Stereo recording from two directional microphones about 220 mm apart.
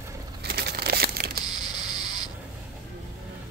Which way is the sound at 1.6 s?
20° left (ahead or behind).